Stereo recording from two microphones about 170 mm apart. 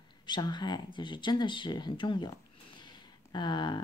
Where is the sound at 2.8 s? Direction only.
25° left (ahead or behind).